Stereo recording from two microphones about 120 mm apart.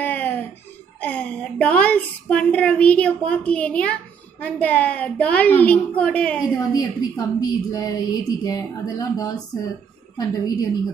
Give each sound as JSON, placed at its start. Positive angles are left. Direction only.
{"t": 0.0, "sound": "a sound", "side_deg": 15}
{"t": 1.0, "sound": "a woman's voice", "side_deg": 10}
{"t": 6.7, "sound": "a woman's voice", "side_deg": 30}